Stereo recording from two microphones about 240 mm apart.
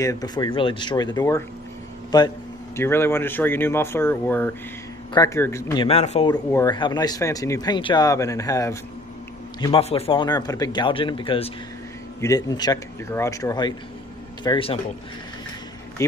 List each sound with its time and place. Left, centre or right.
0.0 s speech: centre
9.6 s a man's voice: left
16.0 s speech: centre